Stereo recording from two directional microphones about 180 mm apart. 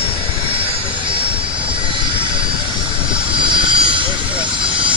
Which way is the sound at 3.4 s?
25° right (ahead or behind).